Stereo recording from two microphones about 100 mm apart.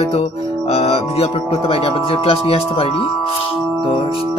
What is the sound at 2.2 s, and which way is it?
Speech, 70° left (ahead or behind).